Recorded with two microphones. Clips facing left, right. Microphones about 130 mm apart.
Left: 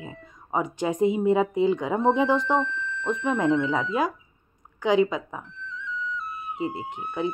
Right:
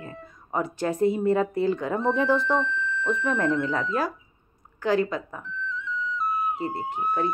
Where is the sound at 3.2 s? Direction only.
15° left (ahead or behind).